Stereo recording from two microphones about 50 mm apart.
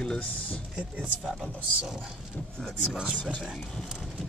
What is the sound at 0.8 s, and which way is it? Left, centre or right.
Speech, centre.